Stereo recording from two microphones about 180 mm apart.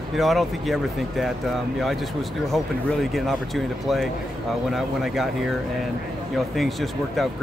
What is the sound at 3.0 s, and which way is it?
Speech, centre (ahead or behind).